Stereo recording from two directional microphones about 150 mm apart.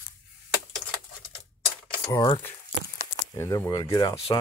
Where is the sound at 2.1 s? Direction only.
30° left (ahead or behind).